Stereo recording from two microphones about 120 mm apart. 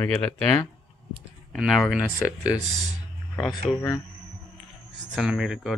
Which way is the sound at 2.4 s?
35° left (ahead or behind).